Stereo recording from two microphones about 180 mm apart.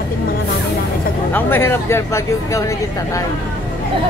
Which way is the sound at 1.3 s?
10° left (ahead or behind).